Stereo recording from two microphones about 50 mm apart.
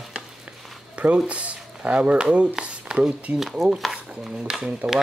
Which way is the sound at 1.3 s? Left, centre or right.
Right.